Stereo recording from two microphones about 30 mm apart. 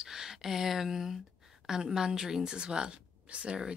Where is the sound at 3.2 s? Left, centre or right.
Right.